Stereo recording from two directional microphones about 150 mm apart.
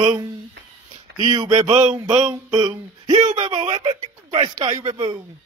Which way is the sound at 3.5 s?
30° right (ahead or behind).